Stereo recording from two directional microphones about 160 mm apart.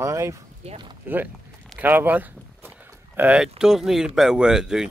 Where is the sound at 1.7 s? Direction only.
10° right (ahead or behind).